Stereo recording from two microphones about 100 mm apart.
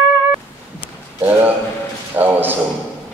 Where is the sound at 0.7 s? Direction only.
15° right (ahead or behind).